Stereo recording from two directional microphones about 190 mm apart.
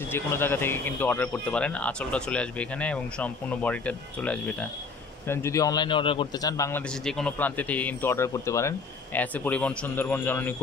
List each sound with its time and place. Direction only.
0.1 s a man's voice: 10° left (ahead or behind)
7.1 s speech: 5° left (ahead or behind)